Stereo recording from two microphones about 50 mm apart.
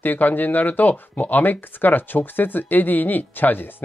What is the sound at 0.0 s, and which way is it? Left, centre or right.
Speech, left.